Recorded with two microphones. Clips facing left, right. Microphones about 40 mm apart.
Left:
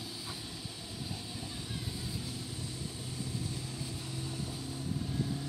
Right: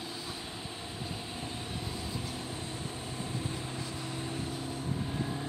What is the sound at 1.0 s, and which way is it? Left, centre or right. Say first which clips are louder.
Vehicle: right 2 dB; right.